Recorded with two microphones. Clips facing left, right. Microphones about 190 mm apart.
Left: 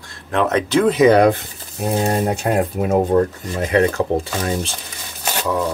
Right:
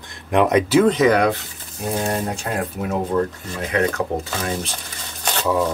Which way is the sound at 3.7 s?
30° left (ahead or behind).